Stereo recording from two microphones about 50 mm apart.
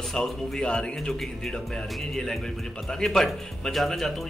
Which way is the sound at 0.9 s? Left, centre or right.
Centre.